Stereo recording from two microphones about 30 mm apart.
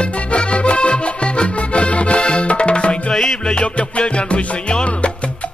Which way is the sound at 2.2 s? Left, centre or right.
Left.